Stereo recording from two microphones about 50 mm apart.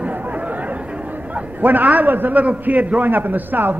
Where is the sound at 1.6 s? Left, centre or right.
Right.